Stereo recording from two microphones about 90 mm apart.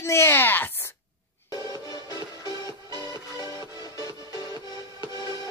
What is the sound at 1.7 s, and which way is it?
Music, 45° left (ahead or behind).